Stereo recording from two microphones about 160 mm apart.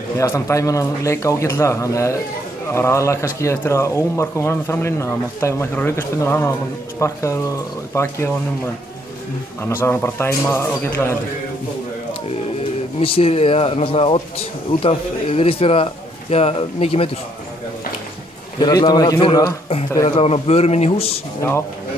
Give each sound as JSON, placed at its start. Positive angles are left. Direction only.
{"t": 0.2, "sound": "a man's voice", "side_deg": 20}
{"t": 9.6, "sound": "speech", "side_deg": 15}
{"t": 13.0, "sound": "a man's voice", "side_deg": 35}
{"t": 18.6, "sound": "a man's voice", "side_deg": 25}